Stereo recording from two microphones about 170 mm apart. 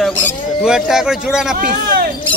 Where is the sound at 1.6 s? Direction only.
60° right (ahead or behind).